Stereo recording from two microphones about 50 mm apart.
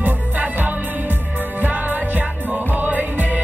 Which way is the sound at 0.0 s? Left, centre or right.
Right.